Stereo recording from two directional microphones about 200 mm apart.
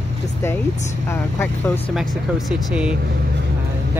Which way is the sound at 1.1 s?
10° left (ahead or behind).